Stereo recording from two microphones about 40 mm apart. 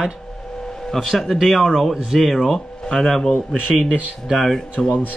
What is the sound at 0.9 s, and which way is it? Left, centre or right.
Speech, centre.